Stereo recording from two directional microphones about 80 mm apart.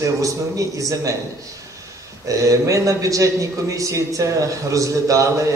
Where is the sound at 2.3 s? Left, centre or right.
Right.